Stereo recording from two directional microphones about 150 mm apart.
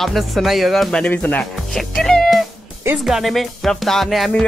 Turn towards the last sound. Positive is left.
turn(degrees=0)  # may be behind; listen again after turning